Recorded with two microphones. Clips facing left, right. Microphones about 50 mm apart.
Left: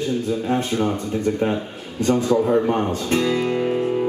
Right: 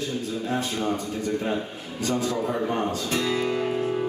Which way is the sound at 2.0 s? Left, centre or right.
Left.